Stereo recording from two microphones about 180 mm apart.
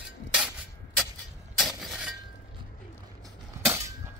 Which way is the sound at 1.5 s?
Centre (ahead or behind).